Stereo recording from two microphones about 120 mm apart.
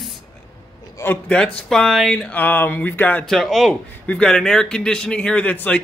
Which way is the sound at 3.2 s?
Centre (ahead or behind).